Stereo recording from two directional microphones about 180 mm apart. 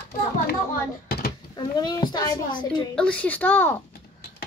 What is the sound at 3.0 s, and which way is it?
Speech, 5° left (ahead or behind).